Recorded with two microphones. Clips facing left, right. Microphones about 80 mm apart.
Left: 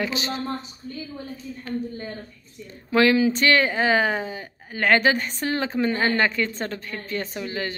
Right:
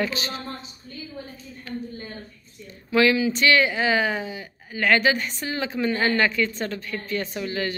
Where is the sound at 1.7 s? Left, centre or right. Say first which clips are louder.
Left 3 dB; left.